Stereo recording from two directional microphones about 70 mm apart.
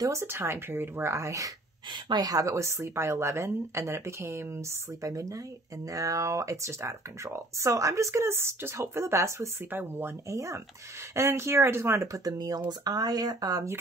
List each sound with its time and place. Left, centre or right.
0.0 s speech: right
1.9 s speech: right
2.5 s speech: right
9.7 s speech: right
10.2 s speech: right